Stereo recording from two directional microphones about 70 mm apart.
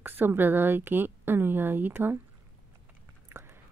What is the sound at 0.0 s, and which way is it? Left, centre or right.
Speech, right.